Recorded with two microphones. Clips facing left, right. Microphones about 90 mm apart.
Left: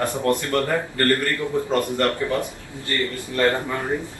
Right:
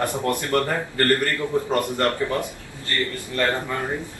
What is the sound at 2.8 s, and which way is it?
Speech, 20° left (ahead or behind).